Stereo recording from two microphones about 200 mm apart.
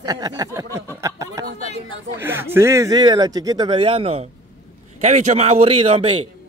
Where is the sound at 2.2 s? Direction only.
10° right (ahead or behind).